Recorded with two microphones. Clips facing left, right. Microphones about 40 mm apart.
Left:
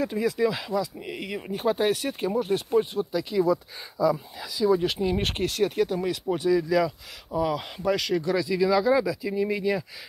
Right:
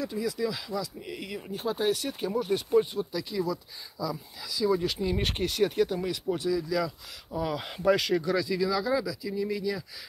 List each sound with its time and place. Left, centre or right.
0.0 s speech: left
0.7 s speech: left
3.1 s speech: centre
4.0 s speech: left
4.5 s speech: left
5.0 s speech: centre
6.5 s speech: left
7.3 s speech: centre
8.6 s speech: left